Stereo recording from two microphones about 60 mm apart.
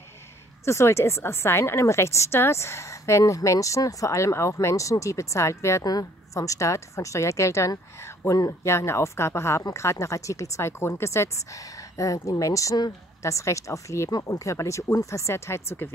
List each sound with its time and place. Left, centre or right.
0.7 s a woman's voice: left
3.3 s speech: left
5.9 s speech: left